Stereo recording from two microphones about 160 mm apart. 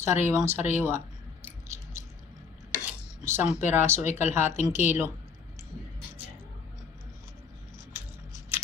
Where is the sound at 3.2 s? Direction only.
15° right (ahead or behind).